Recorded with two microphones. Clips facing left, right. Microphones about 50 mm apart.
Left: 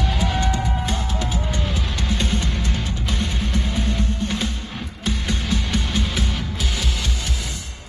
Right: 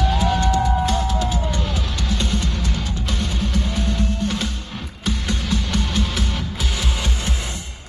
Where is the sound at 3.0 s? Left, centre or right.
Centre.